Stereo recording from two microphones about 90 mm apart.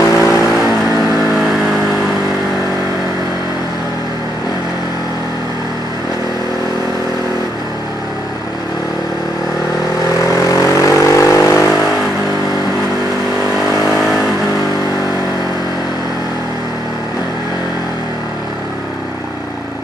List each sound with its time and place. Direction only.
0.0 s vehicle: 35° left (ahead or behind)
0.9 s vehicle: centre (ahead or behind)
10.2 s vehicle: 35° left (ahead or behind)